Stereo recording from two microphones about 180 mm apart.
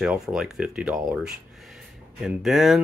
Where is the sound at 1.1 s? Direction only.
5° right (ahead or behind).